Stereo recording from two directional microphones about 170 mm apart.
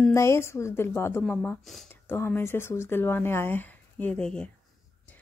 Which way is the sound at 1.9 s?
15° left (ahead or behind).